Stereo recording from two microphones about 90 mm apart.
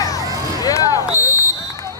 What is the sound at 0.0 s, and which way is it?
Vehicle, 40° left (ahead or behind).